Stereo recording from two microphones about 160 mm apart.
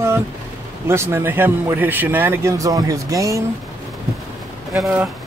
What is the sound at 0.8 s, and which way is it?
Speech, 15° right (ahead or behind).